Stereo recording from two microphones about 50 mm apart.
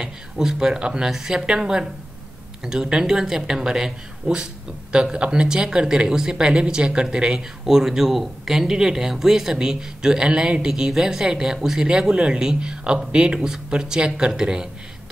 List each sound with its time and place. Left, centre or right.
0.0 s speech: centre
1.1 s a woman's voice: centre